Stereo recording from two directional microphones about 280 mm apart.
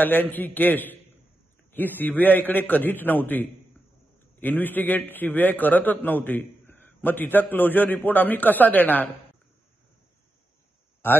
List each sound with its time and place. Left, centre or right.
0.0 s a man's voice: centre